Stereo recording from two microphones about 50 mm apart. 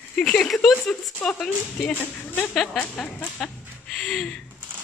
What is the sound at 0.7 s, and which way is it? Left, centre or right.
Speech, left.